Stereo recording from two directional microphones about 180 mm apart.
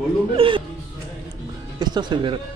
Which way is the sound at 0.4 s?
30° right (ahead or behind).